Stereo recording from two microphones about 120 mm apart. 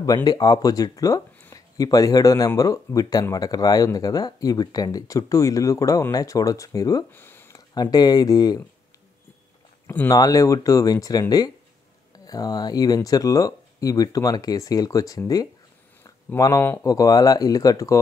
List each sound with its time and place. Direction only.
0.0 s speech: 30° left (ahead or behind)
7.1 s a sound: 20° left (ahead or behind)
7.7 s speech: 35° left (ahead or behind)
9.8 s speech: 25° left (ahead or behind)